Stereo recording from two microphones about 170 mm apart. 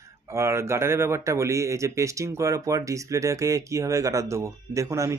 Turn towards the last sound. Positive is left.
turn(degrees=-20)  # may be behind; listen again after turning